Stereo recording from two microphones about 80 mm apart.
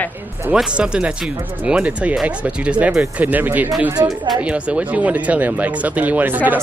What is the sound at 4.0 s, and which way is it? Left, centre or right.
Speech, right.